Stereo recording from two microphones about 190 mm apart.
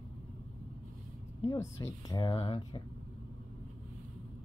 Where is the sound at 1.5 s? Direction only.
15° left (ahead or behind).